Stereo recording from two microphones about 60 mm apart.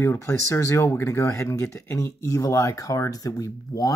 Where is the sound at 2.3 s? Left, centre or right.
Left.